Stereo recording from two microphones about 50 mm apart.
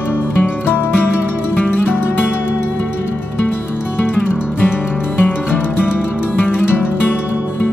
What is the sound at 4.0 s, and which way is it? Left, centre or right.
Music, left.